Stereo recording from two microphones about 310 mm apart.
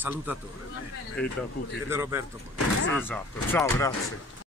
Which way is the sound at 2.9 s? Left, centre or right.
Centre.